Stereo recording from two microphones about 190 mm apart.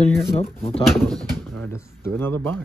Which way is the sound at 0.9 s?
5° left (ahead or behind).